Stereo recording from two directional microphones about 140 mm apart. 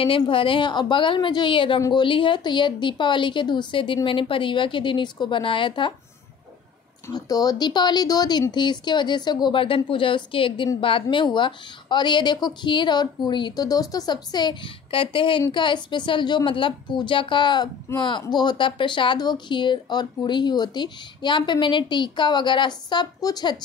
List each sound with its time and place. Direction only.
0.0 s speech: 40° left (ahead or behind)
7.1 s speech: 25° left (ahead or behind)